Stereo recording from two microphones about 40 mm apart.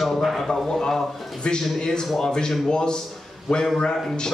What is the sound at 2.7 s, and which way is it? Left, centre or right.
Speech, centre.